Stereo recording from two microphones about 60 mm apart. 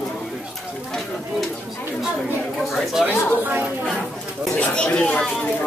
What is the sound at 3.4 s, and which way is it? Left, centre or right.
Speech, right.